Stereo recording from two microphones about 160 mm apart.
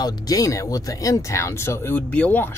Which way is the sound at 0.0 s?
25° left (ahead or behind).